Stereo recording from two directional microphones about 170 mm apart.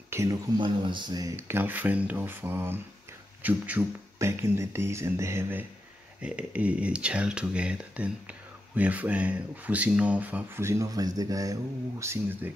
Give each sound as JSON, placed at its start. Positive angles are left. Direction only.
{"t": 0.1, "sound": "speech", "side_deg": -20}